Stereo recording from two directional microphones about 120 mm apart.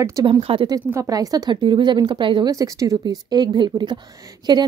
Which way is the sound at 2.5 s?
30° right (ahead or behind).